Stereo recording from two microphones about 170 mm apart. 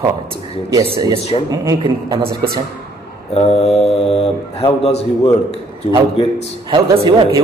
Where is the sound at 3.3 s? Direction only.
35° left (ahead or behind).